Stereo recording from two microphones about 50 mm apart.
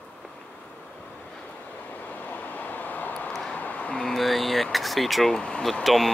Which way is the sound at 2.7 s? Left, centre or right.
Left.